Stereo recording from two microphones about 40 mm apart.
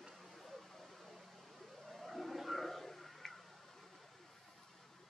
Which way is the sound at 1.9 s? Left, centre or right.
Centre.